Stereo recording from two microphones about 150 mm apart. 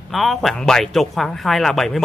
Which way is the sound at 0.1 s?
Centre (ahead or behind).